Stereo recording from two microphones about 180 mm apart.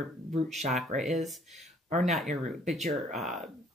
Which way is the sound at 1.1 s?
Centre (ahead or behind).